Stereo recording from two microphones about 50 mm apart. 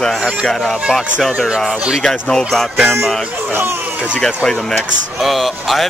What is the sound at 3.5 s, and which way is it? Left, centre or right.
Speech, right.